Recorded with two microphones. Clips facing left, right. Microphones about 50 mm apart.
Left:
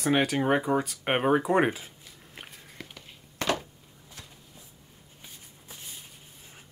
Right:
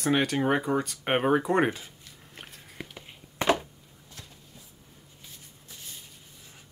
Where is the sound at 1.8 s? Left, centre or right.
Centre.